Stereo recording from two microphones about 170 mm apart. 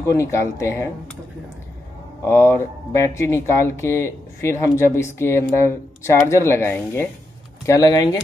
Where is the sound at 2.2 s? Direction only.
15° left (ahead or behind).